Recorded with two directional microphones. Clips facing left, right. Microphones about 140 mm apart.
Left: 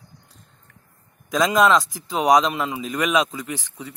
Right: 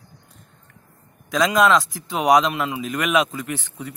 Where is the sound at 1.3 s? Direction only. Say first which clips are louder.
Even; centre (ahead or behind).